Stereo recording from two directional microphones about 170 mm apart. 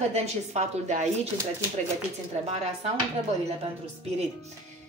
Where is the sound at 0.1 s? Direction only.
40° right (ahead or behind).